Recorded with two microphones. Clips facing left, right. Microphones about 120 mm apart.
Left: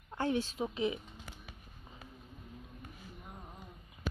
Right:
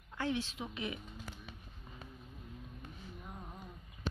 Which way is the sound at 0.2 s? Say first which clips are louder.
Left 4 dB; 45° left (ahead or behind).